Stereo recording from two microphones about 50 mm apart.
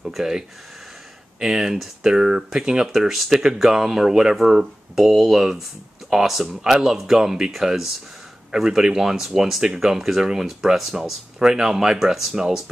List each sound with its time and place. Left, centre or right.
0.2 s speech: centre
6.6 s speech: centre